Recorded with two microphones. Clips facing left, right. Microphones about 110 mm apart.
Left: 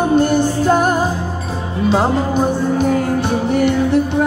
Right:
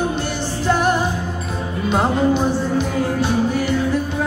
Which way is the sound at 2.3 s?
55° left (ahead or behind).